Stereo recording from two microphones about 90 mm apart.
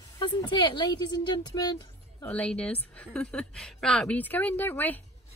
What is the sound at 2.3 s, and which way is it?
A woman's voice, 10° left (ahead or behind).